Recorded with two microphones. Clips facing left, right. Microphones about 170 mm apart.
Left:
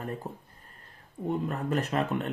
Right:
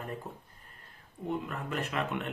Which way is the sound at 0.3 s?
40° left (ahead or behind).